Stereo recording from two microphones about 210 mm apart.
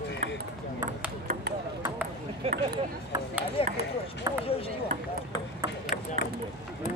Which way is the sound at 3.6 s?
25° left (ahead or behind).